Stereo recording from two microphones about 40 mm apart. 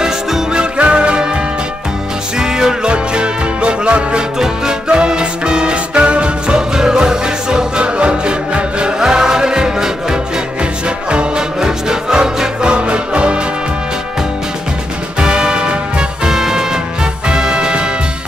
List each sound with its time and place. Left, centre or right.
0.0 s music: centre
0.7 s music: right
2.3 s music: centre
9.0 s music: centre
15.1 s music: right
16.3 s music: centre